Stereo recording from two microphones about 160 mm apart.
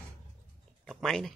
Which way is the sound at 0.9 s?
Centre (ahead or behind).